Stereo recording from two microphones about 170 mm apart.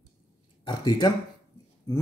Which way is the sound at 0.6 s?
25° left (ahead or behind).